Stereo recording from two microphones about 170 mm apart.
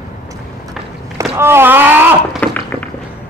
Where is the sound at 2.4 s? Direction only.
10° left (ahead or behind).